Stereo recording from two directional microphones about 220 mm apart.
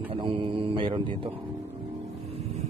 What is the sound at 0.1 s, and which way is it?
Speech, 25° right (ahead or behind).